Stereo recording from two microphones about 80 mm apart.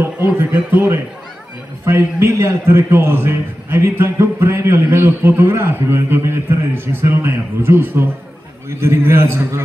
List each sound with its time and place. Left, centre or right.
0.0 s a man's voice: right